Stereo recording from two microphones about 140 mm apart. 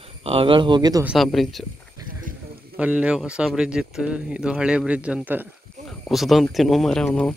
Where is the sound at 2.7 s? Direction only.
10° right (ahead or behind).